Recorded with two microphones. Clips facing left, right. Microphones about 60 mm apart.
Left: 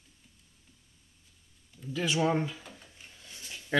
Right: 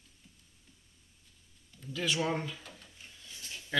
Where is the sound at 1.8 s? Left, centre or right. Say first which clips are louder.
Left 4 dB; centre.